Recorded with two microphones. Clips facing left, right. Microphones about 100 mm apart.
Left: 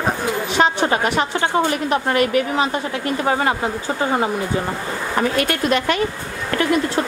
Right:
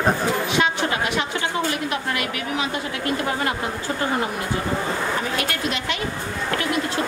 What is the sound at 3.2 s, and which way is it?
Speech, 30° left (ahead or behind).